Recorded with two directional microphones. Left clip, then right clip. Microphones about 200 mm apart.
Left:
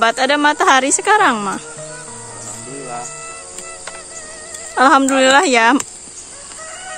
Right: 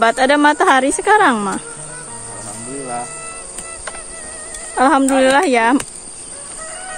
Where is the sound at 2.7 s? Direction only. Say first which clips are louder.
Right 3 dB; centre (ahead or behind).